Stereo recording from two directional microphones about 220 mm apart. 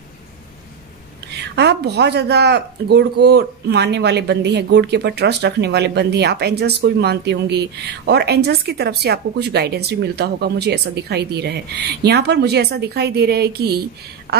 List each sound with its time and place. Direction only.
1.3 s speech: 50° right (ahead or behind)